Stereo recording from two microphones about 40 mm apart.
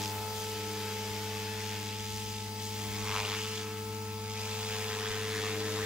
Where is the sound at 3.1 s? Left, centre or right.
Centre.